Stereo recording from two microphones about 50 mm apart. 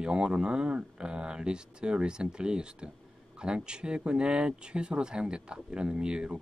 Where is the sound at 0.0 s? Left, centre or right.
Centre.